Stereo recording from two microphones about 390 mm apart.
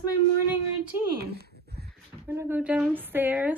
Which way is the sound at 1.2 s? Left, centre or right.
Right.